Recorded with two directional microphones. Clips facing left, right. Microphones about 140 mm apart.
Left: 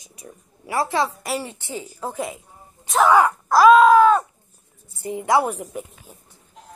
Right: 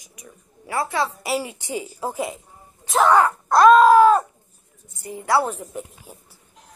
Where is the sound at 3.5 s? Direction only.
Centre (ahead or behind).